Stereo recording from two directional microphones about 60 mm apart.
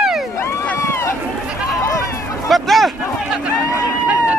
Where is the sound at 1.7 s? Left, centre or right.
Left.